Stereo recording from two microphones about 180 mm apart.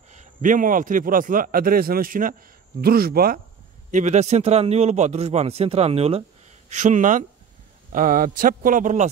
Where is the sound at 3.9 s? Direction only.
40° right (ahead or behind).